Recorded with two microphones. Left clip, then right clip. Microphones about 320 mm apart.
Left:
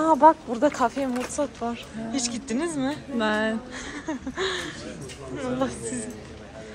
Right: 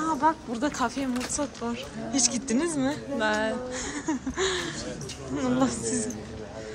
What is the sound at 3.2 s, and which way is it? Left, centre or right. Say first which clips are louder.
Music: left 2 dB; left.